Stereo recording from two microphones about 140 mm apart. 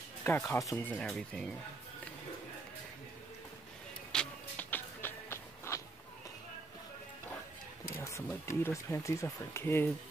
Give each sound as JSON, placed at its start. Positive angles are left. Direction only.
{"t": 0.2, "sound": "speech", "side_deg": 15}
{"t": 0.8, "sound": "speech", "side_deg": 5}
{"t": 4.1, "sound": "music", "side_deg": 10}
{"t": 7.9, "sound": "speech", "side_deg": 20}